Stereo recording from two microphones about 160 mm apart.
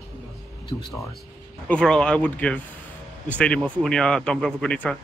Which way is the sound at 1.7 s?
5° left (ahead or behind).